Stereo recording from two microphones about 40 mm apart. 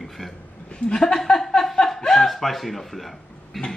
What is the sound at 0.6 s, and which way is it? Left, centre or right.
Speech, left.